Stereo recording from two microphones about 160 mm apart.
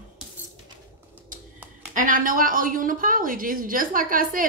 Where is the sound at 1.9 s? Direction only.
55° right (ahead or behind).